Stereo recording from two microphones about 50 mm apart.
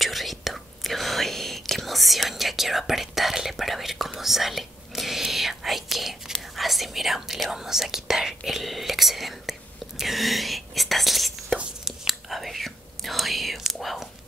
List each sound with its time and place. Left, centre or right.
0.0 s whispering: centre